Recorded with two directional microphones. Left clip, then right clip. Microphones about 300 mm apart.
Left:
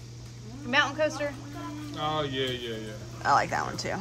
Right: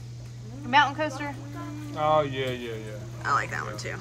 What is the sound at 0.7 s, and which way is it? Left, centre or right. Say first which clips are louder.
Speech: right 3 dB; centre.